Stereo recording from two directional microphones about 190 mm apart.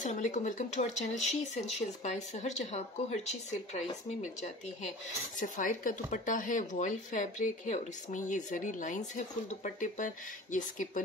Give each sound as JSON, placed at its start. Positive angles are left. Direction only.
{"t": 0.0, "sound": "speech", "side_deg": 40}